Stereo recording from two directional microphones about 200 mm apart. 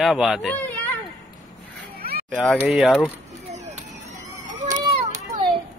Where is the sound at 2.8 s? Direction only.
5° left (ahead or behind).